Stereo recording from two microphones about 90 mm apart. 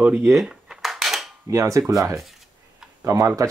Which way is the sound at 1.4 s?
35° right (ahead or behind).